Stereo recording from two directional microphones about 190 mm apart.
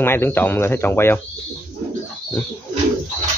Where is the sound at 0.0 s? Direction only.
10° left (ahead or behind).